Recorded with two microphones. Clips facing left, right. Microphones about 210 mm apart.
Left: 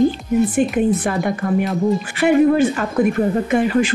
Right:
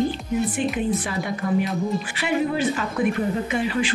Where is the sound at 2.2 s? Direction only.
50° left (ahead or behind).